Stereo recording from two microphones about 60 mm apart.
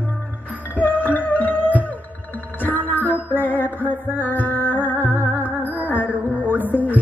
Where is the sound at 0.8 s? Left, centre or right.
Left.